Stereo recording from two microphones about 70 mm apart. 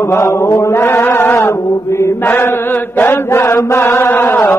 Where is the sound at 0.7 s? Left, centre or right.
Left.